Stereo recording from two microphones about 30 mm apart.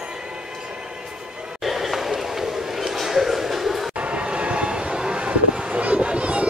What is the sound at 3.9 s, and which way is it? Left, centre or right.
Train, right.